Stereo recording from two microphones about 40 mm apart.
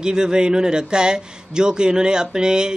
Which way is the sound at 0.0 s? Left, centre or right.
Centre.